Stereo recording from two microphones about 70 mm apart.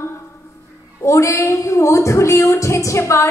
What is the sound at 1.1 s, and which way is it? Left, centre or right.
A woman's voice, left.